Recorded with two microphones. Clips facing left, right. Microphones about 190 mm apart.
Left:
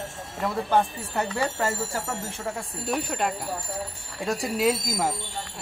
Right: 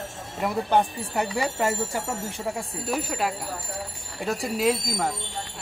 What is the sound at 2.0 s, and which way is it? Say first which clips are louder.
A man's voice: right 2 dB; centre (ahead or behind).